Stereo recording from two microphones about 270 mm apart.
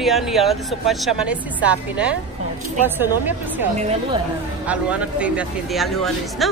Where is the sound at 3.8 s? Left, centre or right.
Right.